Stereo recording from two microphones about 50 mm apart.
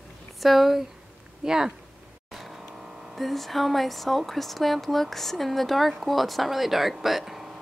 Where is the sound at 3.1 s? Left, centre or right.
Centre.